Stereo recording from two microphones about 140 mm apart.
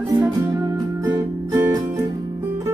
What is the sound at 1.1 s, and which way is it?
Music, 20° right (ahead or behind).